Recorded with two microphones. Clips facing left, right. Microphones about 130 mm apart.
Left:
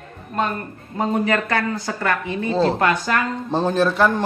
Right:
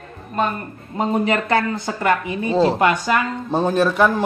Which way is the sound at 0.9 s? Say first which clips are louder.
Right 1 dB; 20° right (ahead or behind).